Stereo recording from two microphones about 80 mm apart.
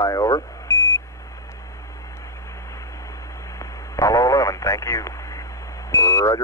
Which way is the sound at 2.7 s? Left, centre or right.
Left.